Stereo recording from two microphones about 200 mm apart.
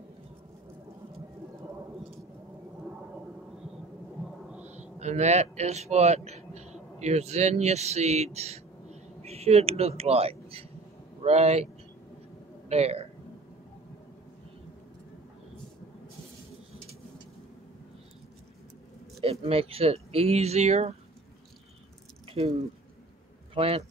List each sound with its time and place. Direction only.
4.9 s a man's voice: 35° right (ahead or behind)
12.6 s speech: 30° right (ahead or behind)
19.4 s speech: 30° right (ahead or behind)
22.3 s a man's voice: 30° right (ahead or behind)